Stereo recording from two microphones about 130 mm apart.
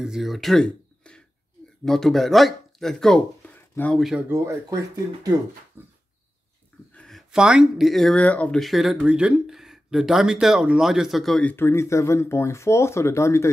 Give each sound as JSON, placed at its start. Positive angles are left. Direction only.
{"t": 0.0, "sound": "speech", "side_deg": -5}
{"t": 3.5, "sound": "a sound", "side_deg": 15}
{"t": 3.9, "sound": "speech", "side_deg": -5}
{"t": 4.3, "sound": "speech", "side_deg": -25}
{"t": 5.8, "sound": "a sound", "side_deg": -15}
{"t": 6.9, "sound": "speech", "side_deg": 5}
{"t": 11.5, "sound": "speech", "side_deg": 20}